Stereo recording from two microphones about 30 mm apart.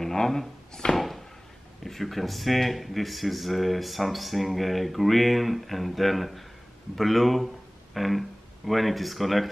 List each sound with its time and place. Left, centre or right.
0.0 s speech: centre
0.9 s a sound: centre
1.9 s speech: centre